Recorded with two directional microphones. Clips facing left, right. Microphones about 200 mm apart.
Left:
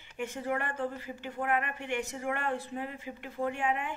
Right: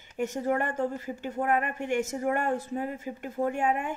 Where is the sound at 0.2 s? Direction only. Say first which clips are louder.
Right 6 dB; 40° right (ahead or behind).